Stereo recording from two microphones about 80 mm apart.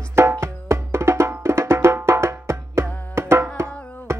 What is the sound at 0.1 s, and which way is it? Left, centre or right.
Music, right.